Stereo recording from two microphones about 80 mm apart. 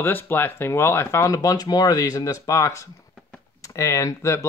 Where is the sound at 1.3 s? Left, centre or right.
Left.